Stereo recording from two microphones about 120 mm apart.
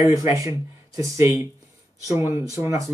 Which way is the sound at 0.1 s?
30° right (ahead or behind).